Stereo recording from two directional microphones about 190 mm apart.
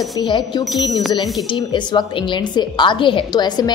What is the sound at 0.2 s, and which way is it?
Speech, 25° left (ahead or behind).